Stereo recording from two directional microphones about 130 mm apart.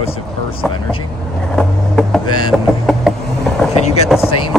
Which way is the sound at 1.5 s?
Centre (ahead or behind).